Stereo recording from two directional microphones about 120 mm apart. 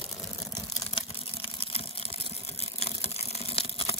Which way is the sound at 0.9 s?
50° left (ahead or behind).